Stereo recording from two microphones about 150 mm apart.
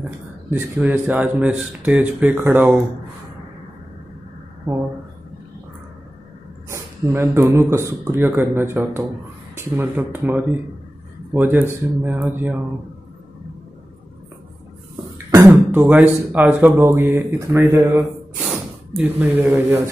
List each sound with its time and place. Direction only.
0.5 s speech: 10° right (ahead or behind)
6.7 s speech: 15° right (ahead or behind)
15.3 s speech: 20° right (ahead or behind)
18.4 s gasp: centre (ahead or behind)
19.0 s speech: 15° right (ahead or behind)